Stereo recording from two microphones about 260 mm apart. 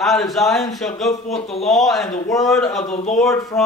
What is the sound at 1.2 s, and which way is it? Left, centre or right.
Speech, left.